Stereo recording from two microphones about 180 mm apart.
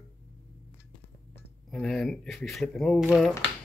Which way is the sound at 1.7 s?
5° left (ahead or behind).